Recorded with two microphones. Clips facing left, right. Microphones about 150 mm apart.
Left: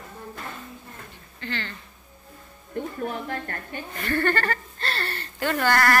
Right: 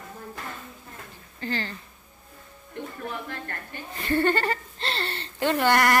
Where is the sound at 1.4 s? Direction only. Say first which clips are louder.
Right 3 dB; 40° right (ahead or behind).